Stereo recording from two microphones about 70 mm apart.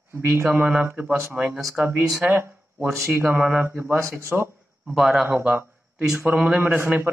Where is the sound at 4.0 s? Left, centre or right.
Right.